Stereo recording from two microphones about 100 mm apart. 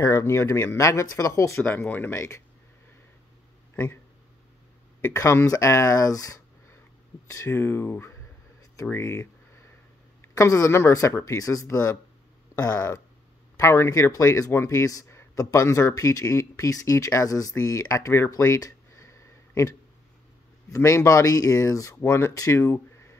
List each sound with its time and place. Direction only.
0.1 s speech: 25° left (ahead or behind)
1.6 s speech: 20° left (ahead or behind)
3.7 s speech: 20° left (ahead or behind)
5.0 s speech: 25° left (ahead or behind)
18.3 s a sound: 35° left (ahead or behind)
20.7 s speech: 30° left (ahead or behind)